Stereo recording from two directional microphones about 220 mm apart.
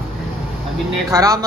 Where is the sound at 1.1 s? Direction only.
15° right (ahead or behind).